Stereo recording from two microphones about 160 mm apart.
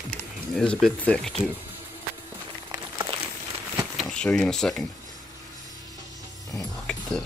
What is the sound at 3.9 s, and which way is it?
Speech, 5° left (ahead or behind).